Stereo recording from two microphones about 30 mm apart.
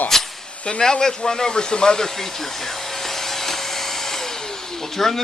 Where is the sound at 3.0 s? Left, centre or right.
Centre.